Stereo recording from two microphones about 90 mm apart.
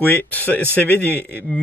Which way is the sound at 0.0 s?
20° left (ahead or behind).